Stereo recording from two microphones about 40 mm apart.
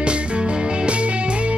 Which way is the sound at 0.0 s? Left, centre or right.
Right.